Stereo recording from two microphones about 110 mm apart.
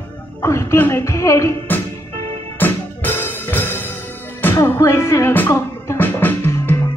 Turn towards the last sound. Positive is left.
turn(degrees=20)  # may be behind; listen again after turning